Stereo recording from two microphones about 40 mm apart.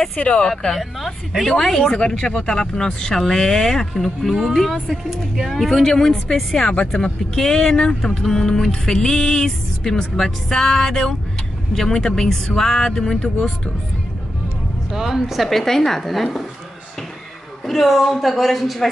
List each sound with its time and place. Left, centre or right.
0.1 s speech: left
0.5 s speech: centre
2.0 s speech: left; by 3.8 s centre
4.0 s a woman's voice: centre
6.5 s speech: left
6.9 s speech: centre
8.9 s speech: centre
14.9 s a woman's voice: centre
15.6 s speech: centre
17.6 s a woman's voice: centre